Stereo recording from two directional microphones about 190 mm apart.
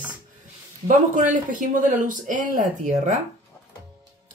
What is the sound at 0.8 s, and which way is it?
A man's voice, 45° right (ahead or behind).